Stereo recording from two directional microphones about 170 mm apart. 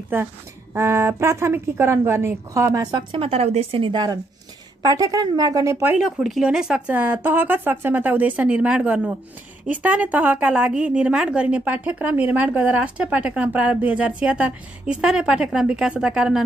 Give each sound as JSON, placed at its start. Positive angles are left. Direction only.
{"t": 0.1, "sound": "a woman's voice", "side_deg": -10}
{"t": 5.9, "sound": "a woman's voice", "side_deg": 0}